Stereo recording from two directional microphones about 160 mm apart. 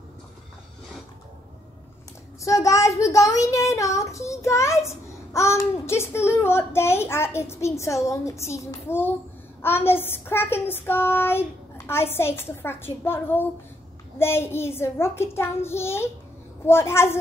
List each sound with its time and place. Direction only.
2.4 s a child's voice: 20° left (ahead or behind)
5.3 s child singing: 15° left (ahead or behind)